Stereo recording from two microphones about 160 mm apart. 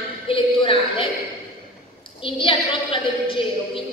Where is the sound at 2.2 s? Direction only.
35° left (ahead or behind).